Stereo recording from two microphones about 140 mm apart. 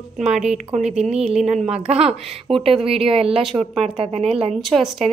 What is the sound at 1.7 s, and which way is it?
Speech, 45° right (ahead or behind).